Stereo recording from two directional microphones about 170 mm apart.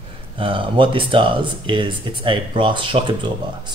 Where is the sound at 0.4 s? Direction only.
30° right (ahead or behind).